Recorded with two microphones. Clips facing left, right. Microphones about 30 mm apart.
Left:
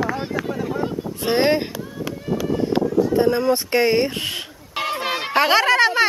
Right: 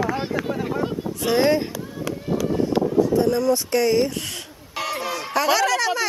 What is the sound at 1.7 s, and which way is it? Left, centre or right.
Run, centre.